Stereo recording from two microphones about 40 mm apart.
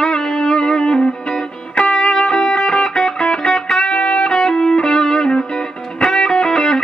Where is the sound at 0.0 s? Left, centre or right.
Centre.